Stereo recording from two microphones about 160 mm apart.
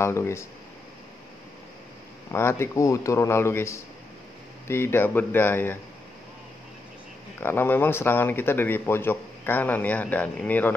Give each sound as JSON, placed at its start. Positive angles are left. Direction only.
{"t": 0.0, "sound": "speech", "side_deg": 15}
{"t": 2.3, "sound": "speech", "side_deg": 15}
{"t": 7.3, "sound": "speech", "side_deg": 15}